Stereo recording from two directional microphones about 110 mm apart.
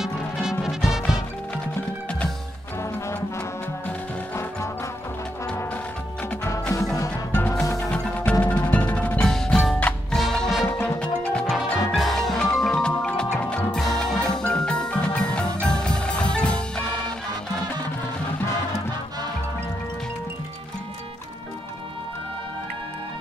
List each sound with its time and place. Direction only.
0.0 s music: 5° right (ahead or behind)
7.0 s music: 20° left (ahead or behind)
8.3 s music: 10° left (ahead or behind)